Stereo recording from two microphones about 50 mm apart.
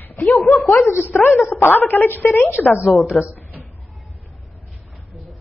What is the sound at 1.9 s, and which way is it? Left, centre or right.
Speech, left.